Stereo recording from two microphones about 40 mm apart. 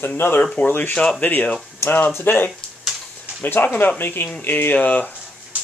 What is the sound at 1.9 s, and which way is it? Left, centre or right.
Speech, left.